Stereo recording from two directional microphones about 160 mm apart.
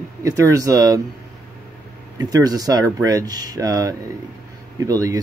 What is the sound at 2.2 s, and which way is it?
Speech, 25° right (ahead or behind).